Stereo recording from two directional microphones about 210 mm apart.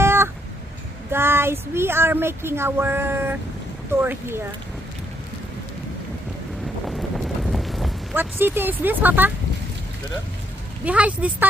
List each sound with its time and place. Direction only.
0.0 s cat: 10° right (ahead or behind)
1.1 s speech: 10° right (ahead or behind)
6.9 s wind noise: centre (ahead or behind)
8.2 s speech: 10° right (ahead or behind)
10.9 s speech: 5° right (ahead or behind)